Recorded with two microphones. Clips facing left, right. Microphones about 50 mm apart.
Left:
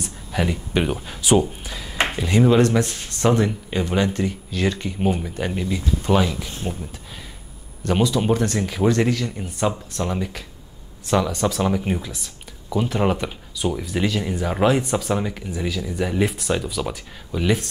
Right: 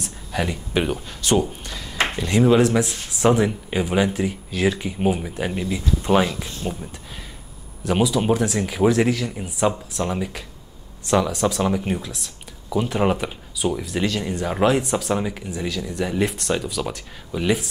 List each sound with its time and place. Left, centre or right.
0.0 s speech: centre
7.8 s speech: centre